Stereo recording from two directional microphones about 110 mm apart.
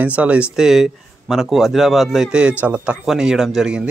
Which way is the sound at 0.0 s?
15° right (ahead or behind).